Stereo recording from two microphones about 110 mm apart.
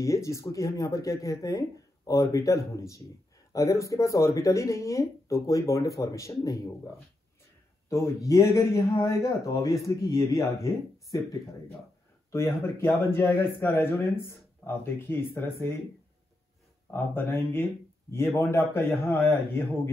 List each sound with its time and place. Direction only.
0.0 s a man's voice: 25° left (ahead or behind)
7.9 s a man's voice: 25° left (ahead or behind)
12.3 s a man's voice: 25° left (ahead or behind)
16.9 s a man's voice: 20° left (ahead or behind)